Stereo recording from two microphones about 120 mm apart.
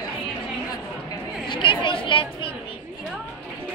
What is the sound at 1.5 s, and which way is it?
Chatter, 45° left (ahead or behind).